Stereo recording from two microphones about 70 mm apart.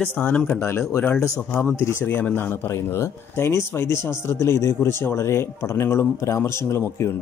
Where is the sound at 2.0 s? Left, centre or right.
Left.